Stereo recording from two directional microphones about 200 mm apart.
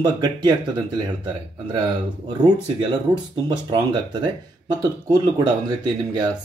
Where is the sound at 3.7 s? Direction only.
20° right (ahead or behind).